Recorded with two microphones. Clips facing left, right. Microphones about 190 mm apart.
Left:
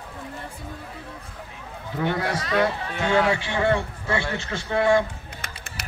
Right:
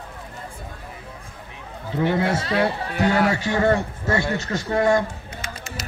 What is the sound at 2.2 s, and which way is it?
A man's voice, 25° right (ahead or behind).